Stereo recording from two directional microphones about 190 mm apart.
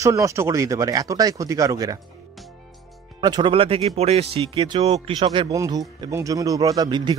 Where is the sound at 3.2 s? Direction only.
20° right (ahead or behind).